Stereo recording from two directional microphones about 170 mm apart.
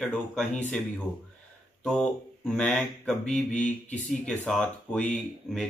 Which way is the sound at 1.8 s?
5° left (ahead or behind).